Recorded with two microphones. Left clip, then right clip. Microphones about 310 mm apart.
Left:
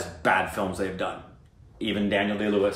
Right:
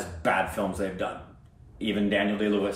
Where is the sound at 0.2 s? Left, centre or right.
Centre.